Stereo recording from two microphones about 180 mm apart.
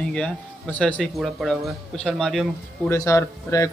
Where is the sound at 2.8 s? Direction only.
15° left (ahead or behind).